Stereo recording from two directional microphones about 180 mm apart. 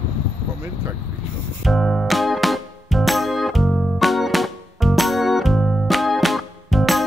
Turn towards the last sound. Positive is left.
turn(degrees=0)  # may be behind; listen again after turning